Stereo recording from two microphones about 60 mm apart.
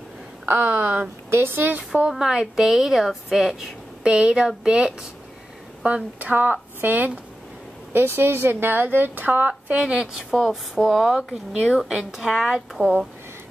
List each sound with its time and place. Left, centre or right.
0.5 s speech: right
2.0 s a woman's voice: centre; by 9.5 s right
9.5 s speech: centre
10.3 s a woman's voice: centre